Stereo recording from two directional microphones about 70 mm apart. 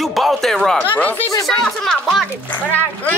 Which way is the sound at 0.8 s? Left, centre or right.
Left.